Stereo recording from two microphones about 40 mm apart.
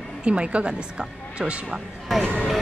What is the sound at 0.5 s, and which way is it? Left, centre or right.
Speech, right.